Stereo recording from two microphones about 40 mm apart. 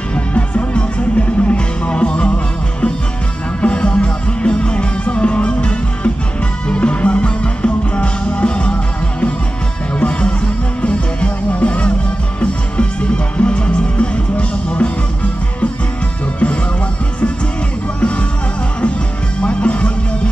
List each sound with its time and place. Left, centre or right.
0.1 s music: left
9.9 s music: left
19.4 s music: left